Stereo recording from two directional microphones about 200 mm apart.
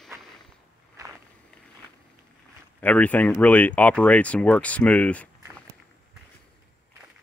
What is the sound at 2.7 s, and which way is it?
Speech, 10° left (ahead or behind).